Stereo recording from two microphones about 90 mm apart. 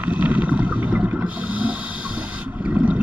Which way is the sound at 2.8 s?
20° right (ahead or behind).